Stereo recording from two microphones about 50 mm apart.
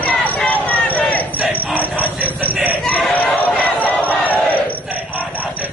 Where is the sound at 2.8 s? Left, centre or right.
Left.